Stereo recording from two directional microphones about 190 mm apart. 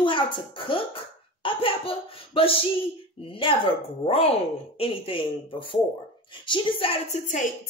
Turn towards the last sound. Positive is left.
turn(degrees=30)  # may be behind; listen again after turning